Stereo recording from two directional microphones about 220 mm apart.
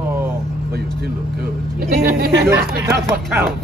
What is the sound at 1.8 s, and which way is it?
Speech, 40° right (ahead or behind).